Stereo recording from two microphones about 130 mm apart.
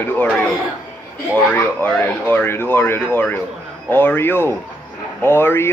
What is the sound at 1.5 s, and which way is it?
Speech, 15° left (ahead or behind).